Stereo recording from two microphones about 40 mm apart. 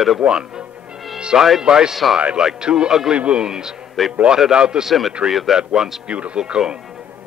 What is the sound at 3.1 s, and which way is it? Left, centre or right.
Speech, right.